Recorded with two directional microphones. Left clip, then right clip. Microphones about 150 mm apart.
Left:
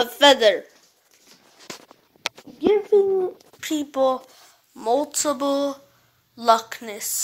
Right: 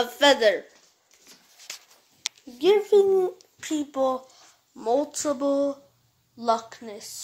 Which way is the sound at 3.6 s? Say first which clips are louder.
Left 4 dB; 10° left (ahead or behind).